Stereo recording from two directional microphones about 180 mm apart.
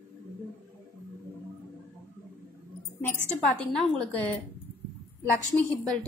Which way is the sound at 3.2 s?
5° left (ahead or behind).